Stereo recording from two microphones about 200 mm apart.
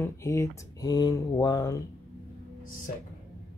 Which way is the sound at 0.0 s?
15° left (ahead or behind).